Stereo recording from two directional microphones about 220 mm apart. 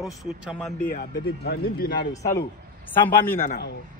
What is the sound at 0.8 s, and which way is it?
Speech, 40° left (ahead or behind).